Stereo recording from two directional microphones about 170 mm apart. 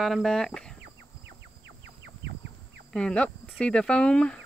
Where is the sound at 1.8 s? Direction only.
90° right.